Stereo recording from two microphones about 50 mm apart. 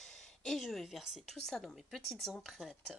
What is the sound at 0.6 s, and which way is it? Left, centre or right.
Speech, centre.